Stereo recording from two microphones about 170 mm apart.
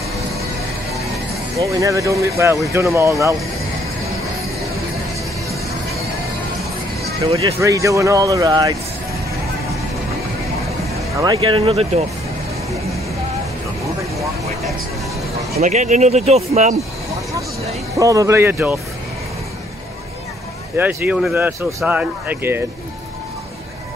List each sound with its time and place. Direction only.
1.6 s a man's voice: 20° right (ahead or behind)
7.2 s speech: 35° right (ahead or behind)
7.6 s a man's voice: 20° right (ahead or behind)
11.3 s speech: 30° right (ahead or behind)
15.6 s speech: 45° right (ahead or behind)
17.9 s speech: 20° right (ahead or behind)
20.7 s speech: 10° right (ahead or behind)